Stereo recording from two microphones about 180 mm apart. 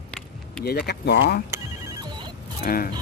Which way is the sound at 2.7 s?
55° left (ahead or behind).